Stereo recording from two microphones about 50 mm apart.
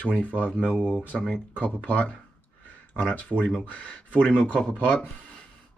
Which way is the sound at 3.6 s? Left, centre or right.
Left.